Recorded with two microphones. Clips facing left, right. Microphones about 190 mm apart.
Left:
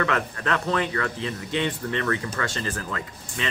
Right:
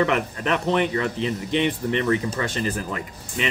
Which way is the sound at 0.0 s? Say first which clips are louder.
Right 4 dB; 20° right (ahead or behind).